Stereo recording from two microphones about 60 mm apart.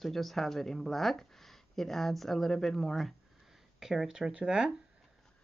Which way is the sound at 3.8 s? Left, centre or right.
Centre.